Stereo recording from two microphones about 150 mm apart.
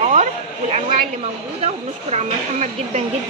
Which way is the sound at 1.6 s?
45° right (ahead or behind).